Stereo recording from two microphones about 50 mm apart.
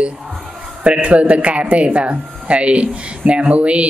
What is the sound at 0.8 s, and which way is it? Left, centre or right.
Speech, right.